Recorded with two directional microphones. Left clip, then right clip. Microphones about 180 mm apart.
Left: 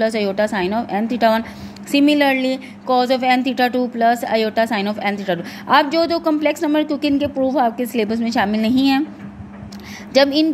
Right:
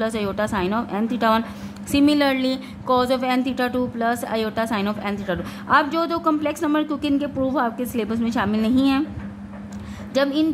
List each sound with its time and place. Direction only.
0.0 s a woman's voice: 5° left (ahead or behind)
10.1 s a woman's voice: 15° left (ahead or behind)